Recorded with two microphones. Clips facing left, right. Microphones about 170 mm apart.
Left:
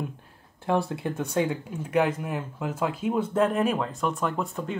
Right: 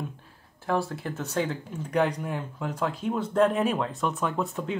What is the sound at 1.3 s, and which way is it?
Speech, 10° left (ahead or behind).